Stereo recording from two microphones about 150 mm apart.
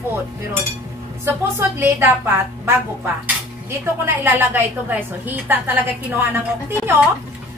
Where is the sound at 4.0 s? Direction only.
15° right (ahead or behind).